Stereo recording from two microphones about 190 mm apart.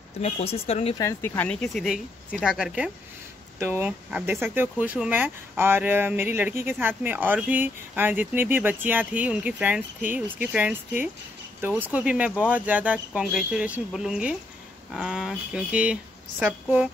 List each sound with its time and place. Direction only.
0.2 s speech: 30° left (ahead or behind)
0.9 s speech: 15° left (ahead or behind); by 16.9 s 10° right (ahead or behind)